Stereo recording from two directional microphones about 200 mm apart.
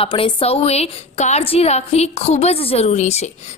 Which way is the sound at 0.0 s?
30° left (ahead or behind).